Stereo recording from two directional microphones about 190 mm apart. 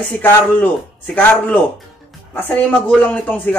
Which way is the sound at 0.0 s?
10° left (ahead or behind).